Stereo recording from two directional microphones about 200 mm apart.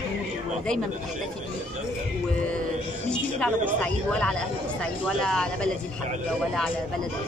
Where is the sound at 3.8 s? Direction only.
5° left (ahead or behind).